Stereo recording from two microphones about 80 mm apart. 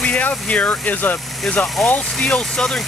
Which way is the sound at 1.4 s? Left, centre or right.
Centre.